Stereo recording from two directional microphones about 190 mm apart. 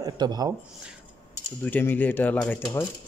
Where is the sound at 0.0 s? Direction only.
20° right (ahead or behind).